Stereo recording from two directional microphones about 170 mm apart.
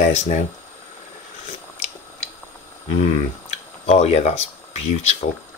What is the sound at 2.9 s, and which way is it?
Speech, 40° left (ahead or behind).